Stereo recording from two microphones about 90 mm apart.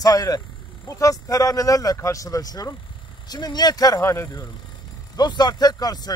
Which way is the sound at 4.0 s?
30° left (ahead or behind).